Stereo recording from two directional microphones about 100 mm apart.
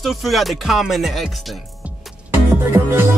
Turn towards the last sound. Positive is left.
turn(degrees=-25)  # may be behind; listen again after turning